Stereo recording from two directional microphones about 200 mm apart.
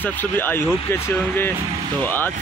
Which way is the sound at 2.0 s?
10° left (ahead or behind).